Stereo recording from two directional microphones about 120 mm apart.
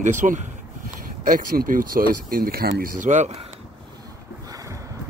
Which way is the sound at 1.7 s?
90° right.